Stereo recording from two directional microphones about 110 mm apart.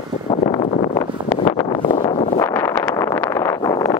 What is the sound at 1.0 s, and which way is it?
Wind noise, 40° left (ahead or behind).